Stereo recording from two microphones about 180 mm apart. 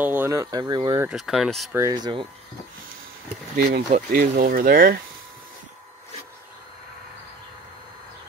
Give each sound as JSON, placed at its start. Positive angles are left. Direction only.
{"t": 0.0, "sound": "speech", "side_deg": -10}
{"t": 1.0, "sound": "speech", "side_deg": 0}
{"t": 1.7, "sound": "speech", "side_deg": -15}
{"t": 3.5, "sound": "speech", "side_deg": -60}
{"t": 3.9, "sound": "speech", "side_deg": -50}